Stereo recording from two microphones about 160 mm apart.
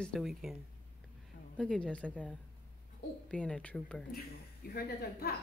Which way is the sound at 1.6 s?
5° left (ahead or behind).